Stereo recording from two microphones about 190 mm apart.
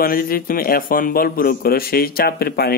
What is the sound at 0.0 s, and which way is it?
Speech, 50° left (ahead or behind).